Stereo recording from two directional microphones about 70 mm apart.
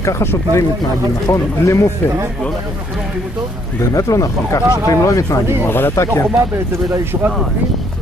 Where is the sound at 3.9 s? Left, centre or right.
Left.